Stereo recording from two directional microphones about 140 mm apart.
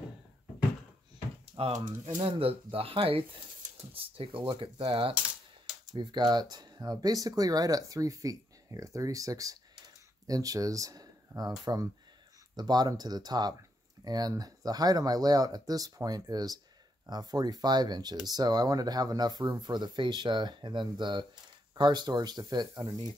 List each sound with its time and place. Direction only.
1.6 s speech: 45° right (ahead or behind)
5.9 s speech: 30° right (ahead or behind)